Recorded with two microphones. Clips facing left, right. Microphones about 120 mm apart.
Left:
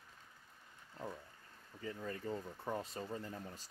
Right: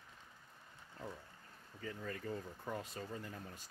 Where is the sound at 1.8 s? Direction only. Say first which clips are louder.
Left 1 dB; 25° left (ahead or behind).